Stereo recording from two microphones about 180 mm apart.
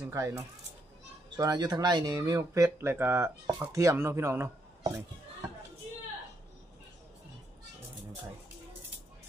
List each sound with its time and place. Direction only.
0.1 s speech: 15° right (ahead or behind)